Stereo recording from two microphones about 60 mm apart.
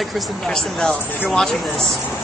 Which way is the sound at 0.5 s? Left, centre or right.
Centre.